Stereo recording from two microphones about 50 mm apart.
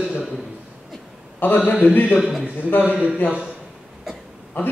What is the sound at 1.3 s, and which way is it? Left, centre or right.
Speech, left.